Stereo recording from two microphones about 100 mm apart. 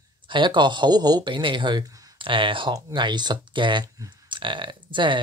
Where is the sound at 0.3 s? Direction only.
55° right (ahead or behind).